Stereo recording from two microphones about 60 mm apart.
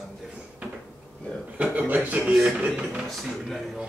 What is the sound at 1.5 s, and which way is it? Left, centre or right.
Speech, right.